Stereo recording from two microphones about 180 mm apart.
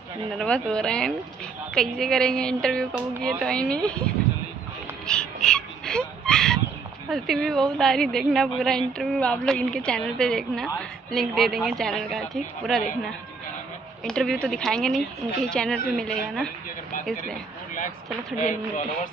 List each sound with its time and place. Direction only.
0.3 s a woman's voice: 5° left (ahead or behind)
5.0 s whimper: 5° left (ahead or behind)
7.1 s a woman's voice: centre (ahead or behind)
18.4 s speech: 45° left (ahead or behind)